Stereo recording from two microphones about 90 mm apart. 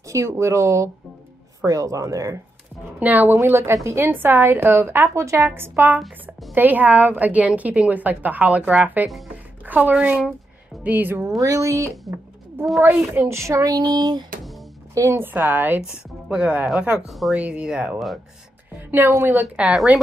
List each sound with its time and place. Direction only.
0.1 s speech: 35° right (ahead or behind)
3.0 s a woman's voice: 20° right (ahead or behind)
11.3 s speech: 40° right (ahead or behind)
12.8 s speech: 20° right (ahead or behind); by 14.2 s 45° right (ahead or behind)
15.0 s speech: 35° right (ahead or behind)
15.2 s a woman's voice: 20° right (ahead or behind)
16.3 s a woman's voice: 10° right (ahead or behind)
18.7 s music: 20° right (ahead or behind)
19.0 s a woman's voice: 30° right (ahead or behind)
19.5 s a woman's voice: 10° right (ahead or behind)